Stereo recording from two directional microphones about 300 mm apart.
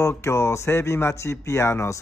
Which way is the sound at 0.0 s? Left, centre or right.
Centre.